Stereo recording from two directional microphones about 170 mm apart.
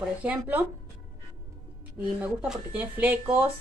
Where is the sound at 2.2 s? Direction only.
10° right (ahead or behind).